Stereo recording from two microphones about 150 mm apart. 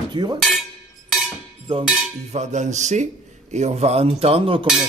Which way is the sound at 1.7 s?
35° right (ahead or behind).